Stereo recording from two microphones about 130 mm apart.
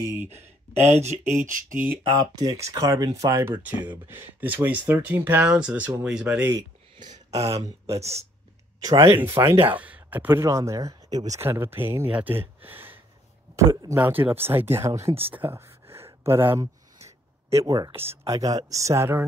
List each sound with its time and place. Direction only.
0.3 s speech: 60° right (ahead or behind); by 1.9 s 90° right
1.9 s speech: 30° right (ahead or behind); by 6.5 s 10° right (ahead or behind)
7.0 s a sound: 35° right (ahead or behind)
7.5 s speech: 50° right (ahead or behind)
9.2 s speech: 15° right (ahead or behind)
11.3 s speech: 20° right (ahead or behind)
15.3 s a sound: 15° right (ahead or behind)
17.5 s speech: 25° right (ahead or behind)